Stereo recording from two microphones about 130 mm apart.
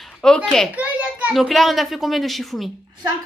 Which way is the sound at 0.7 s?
10° right (ahead or behind).